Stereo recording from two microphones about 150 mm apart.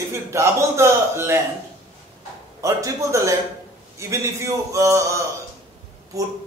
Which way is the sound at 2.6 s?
20° right (ahead or behind).